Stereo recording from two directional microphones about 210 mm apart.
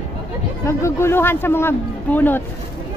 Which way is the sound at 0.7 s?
15° left (ahead or behind).